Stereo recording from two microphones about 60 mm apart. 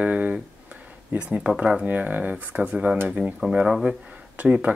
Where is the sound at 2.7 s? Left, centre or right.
Centre.